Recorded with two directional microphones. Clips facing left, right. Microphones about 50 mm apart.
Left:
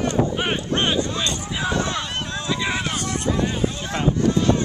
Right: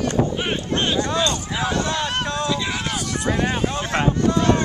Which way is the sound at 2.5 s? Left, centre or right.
Left.